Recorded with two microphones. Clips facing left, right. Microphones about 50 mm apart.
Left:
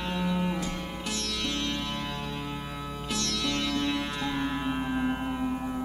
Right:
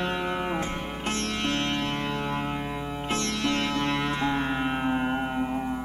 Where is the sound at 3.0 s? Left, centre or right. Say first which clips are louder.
Right 4 dB; right.